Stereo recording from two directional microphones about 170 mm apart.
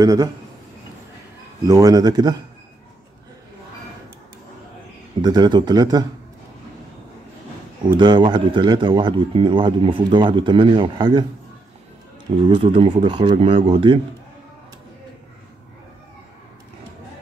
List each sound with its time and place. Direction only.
0.0 s speech: 20° right (ahead or behind)
1.7 s speech: 20° right (ahead or behind)
5.2 s speech: 25° right (ahead or behind)
8.0 s speech: 25° right (ahead or behind)
12.4 s speech: 30° right (ahead or behind)